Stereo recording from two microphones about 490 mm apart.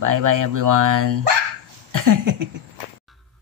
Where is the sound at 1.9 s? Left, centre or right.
Right.